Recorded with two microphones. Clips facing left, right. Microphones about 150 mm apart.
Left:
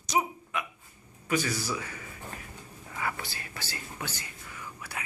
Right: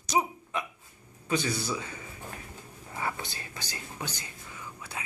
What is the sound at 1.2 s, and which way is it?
A man's voice, 25° right (ahead or behind).